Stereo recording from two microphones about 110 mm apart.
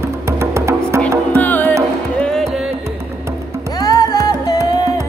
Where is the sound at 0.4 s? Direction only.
25° right (ahead or behind).